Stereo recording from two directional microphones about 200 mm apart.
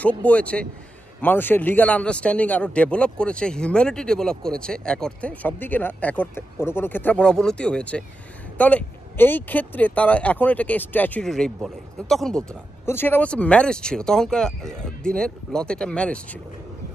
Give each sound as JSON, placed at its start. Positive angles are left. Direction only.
{"t": 0.2, "sound": "a man's voice", "side_deg": 5}